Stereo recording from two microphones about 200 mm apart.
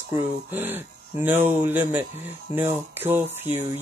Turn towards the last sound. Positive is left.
turn(degrees=-10)  # may be behind; listen again after turning